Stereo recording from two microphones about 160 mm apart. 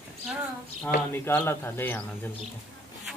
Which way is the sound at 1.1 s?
15° left (ahead or behind).